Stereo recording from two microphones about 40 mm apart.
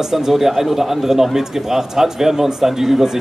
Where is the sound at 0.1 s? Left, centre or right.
Centre.